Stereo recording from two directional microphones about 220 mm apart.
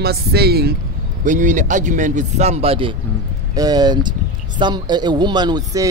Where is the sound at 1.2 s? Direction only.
35° right (ahead or behind).